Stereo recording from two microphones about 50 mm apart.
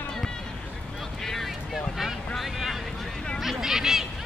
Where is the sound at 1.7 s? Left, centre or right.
Centre.